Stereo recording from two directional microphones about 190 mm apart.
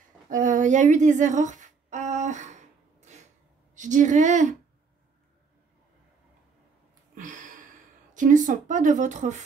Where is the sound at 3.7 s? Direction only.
40° right (ahead or behind).